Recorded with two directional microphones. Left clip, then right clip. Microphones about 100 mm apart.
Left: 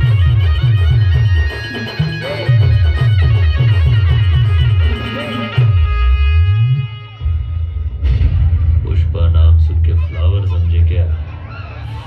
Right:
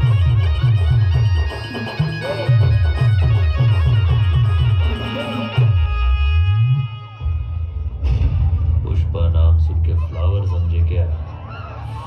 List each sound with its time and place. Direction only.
0.0 s music: 25° right (ahead or behind)
8.8 s a sound: 30° right (ahead or behind)
9.8 s music: 35° right (ahead or behind)